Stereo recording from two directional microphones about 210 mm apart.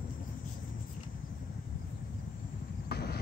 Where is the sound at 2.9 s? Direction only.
50° left (ahead or behind).